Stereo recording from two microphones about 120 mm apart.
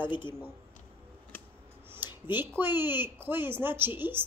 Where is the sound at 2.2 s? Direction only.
15° right (ahead or behind).